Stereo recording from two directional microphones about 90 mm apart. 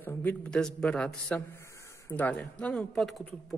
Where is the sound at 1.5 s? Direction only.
35° left (ahead or behind).